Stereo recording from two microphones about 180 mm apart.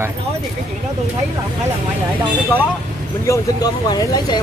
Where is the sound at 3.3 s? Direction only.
20° left (ahead or behind).